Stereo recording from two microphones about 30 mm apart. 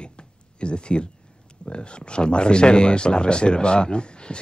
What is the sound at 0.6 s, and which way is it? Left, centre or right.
Speech, left.